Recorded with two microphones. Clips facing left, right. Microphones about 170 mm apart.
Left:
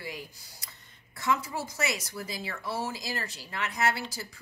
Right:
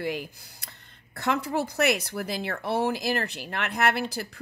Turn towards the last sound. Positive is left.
turn(degrees=-60)  # may be behind; listen again after turning